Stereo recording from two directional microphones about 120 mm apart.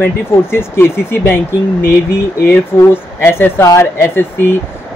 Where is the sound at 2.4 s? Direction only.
20° left (ahead or behind).